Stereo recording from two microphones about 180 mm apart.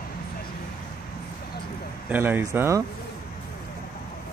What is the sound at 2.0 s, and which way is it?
Speech, 10° right (ahead or behind).